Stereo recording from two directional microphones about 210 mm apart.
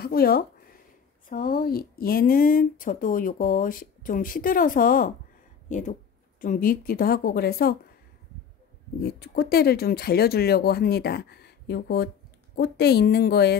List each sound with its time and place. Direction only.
0.0 s a sound: 45° left (ahead or behind)
1.3 s speech: 40° left (ahead or behind)
9.0 s speech: 50° left (ahead or behind)